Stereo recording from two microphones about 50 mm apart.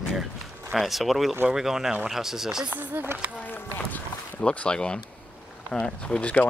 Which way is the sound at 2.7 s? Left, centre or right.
Right.